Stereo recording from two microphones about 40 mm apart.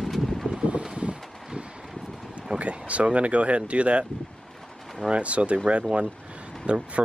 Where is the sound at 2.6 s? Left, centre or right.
Right.